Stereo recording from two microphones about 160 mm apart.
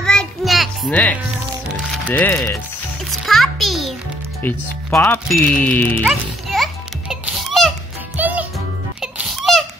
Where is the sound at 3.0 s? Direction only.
Centre (ahead or behind).